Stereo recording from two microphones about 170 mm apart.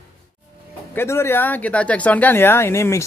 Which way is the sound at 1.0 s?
15° left (ahead or behind).